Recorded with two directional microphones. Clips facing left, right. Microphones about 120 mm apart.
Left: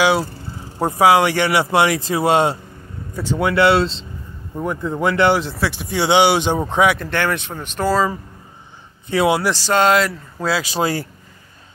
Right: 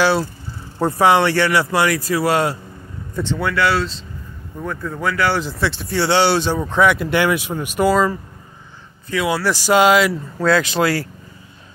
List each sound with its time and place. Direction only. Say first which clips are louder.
0.0 s speech: even; 15° left (ahead or behind)
5.4 s speech: even; centre (ahead or behind)
5.7 s speech: left 1 dB; 15° left (ahead or behind)
7.0 s speech: right 3 dB; 10° right (ahead or behind)
9.1 s speech: left 4 dB; 30° left (ahead or behind)
9.5 s speech: right 2 dB; 10° right (ahead or behind)
10.4 s speech: right 3 dB; 10° left (ahead or behind)